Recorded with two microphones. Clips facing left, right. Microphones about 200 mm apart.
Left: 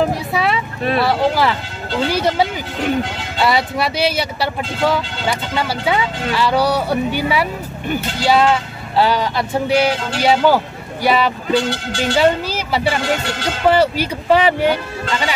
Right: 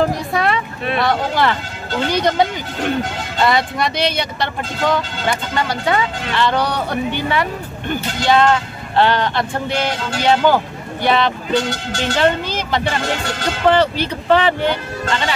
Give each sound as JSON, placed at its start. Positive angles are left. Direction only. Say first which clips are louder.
{"t": 0.0, "sound": "music", "louder": "even", "side_deg": 5}
{"t": 1.0, "sound": "speech", "louder": "even", "side_deg": 5}
{"t": 11.5, "sound": "speech", "louder": "left 3 dB", "side_deg": -45}
{"t": 12.0, "sound": "speech", "louder": "left 2 dB", "side_deg": 10}